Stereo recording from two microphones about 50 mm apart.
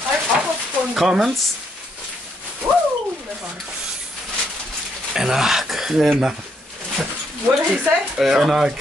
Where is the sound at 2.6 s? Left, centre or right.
Right.